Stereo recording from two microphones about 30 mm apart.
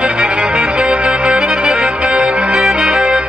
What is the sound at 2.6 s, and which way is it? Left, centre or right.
Music, right.